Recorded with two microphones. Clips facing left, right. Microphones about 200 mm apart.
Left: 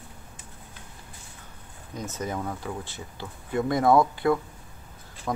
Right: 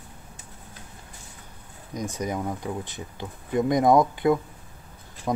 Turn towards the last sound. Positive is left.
turn(degrees=-20)  # may be behind; listen again after turning